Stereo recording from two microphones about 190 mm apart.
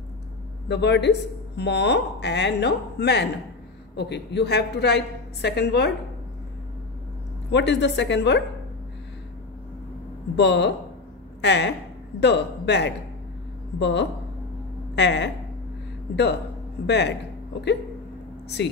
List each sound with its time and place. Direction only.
0.7 s a woman's voice: 65° left (ahead or behind)
7.5 s a woman's voice: 65° left (ahead or behind)
10.3 s a woman's voice: 65° left (ahead or behind)
16.8 s a woman's voice: 65° left (ahead or behind)
18.6 s a woman's voice: 65° left (ahead or behind)